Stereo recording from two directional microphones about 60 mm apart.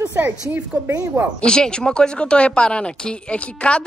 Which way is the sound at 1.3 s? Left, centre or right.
Centre.